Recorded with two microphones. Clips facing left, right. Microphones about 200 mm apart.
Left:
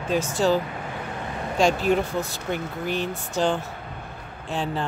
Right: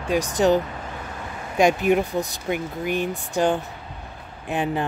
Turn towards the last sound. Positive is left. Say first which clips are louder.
# right 3 dB
turn(degrees=-15)  # may be behind; listen again after turning